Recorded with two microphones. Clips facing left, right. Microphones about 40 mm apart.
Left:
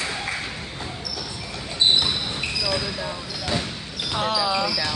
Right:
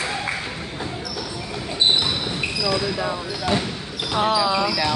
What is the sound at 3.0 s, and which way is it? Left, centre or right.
Basketball bounce, right.